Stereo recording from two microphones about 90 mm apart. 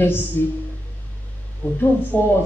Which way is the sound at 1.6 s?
20° left (ahead or behind).